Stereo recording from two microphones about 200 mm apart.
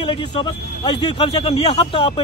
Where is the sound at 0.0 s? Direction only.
25° left (ahead or behind).